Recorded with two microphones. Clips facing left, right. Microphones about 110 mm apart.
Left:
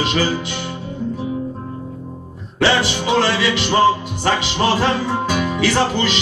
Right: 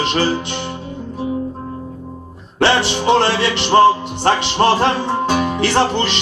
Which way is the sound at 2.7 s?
25° right (ahead or behind).